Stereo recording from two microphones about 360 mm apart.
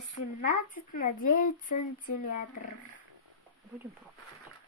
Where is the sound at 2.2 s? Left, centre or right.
Left.